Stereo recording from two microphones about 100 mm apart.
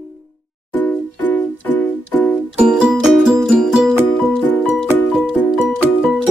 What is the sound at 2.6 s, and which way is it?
Music, 10° right (ahead or behind).